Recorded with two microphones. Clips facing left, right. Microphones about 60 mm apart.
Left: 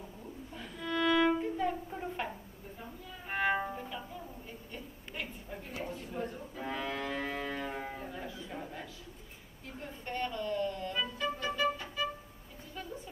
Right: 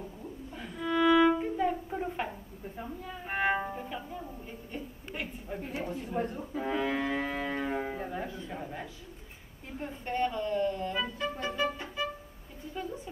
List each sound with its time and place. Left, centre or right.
0.6 s violin: centre
3.3 s music: centre
4.7 s a sound: centre
5.6 s a sound: right
6.2 s music: right
6.6 s music: centre
8.0 s music: right
8.5 s a sound: centre
9.8 s music: right